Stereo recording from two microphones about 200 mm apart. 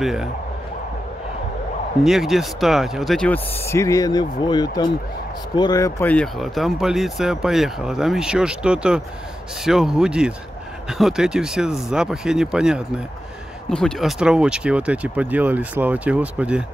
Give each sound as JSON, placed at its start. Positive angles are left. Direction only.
{"t": 0.0, "sound": "speech", "side_deg": 0}
{"t": 2.0, "sound": "speech", "side_deg": 0}